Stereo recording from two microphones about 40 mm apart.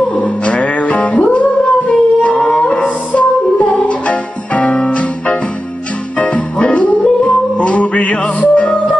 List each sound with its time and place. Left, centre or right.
0.1 s music: left